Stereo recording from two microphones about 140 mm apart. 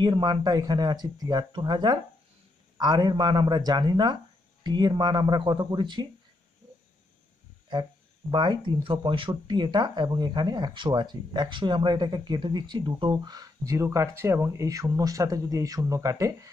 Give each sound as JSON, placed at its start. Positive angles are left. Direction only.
{"t": 0.0, "sound": "speech", "side_deg": -30}
{"t": 8.3, "sound": "speech", "side_deg": -35}